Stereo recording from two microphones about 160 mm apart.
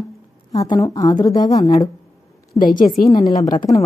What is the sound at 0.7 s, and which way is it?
Speech, 25° left (ahead or behind).